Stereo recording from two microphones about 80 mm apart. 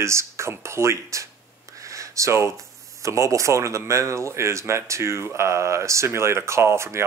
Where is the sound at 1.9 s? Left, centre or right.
Right.